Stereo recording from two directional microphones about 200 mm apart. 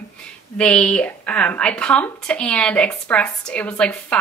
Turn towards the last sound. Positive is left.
turn(degrees=5)  # may be behind; listen again after turning